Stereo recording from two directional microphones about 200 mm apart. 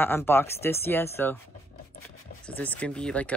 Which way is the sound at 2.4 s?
10° left (ahead or behind).